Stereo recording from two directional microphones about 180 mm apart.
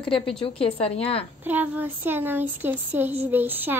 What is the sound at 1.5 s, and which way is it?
Speech, 10° right (ahead or behind).